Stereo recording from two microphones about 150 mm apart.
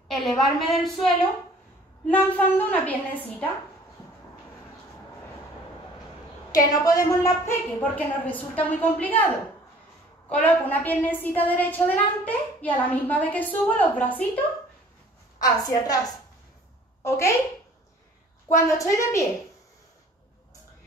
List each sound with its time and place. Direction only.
0.1 s a woman's voice: centre (ahead or behind)
2.0 s a woman's voice: 10° left (ahead or behind)
6.5 s a woman's voice: 25° left (ahead or behind)
7.8 s a woman's voice: 10° left (ahead or behind)
10.4 s a woman's voice: 10° left (ahead or behind)
15.4 s a woman's voice: 25° left (ahead or behind)
18.7 s a woman's voice: 20° left (ahead or behind)